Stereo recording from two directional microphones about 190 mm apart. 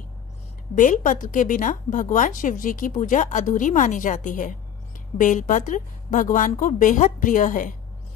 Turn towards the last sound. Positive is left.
turn(degrees=45)  # may be behind; listen again after turning